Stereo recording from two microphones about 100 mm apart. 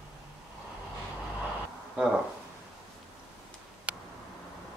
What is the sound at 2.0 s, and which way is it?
Speech, 10° right (ahead or behind).